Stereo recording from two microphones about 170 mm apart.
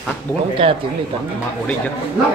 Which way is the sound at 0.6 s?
35° right (ahead or behind).